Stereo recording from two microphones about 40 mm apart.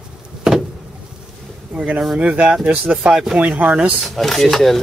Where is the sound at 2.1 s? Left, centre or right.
Right.